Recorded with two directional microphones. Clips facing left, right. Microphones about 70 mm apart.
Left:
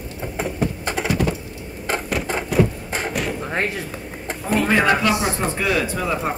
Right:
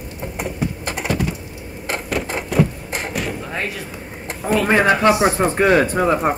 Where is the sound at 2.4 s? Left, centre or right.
Centre.